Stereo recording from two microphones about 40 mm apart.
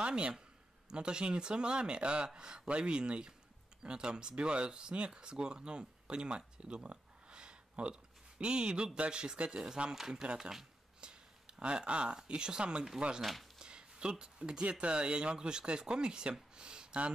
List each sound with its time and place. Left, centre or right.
0.0 s a man's voice: right
9.9 s speech: centre
13.2 s speech: centre
13.6 s speech: right
16.5 s a sound: right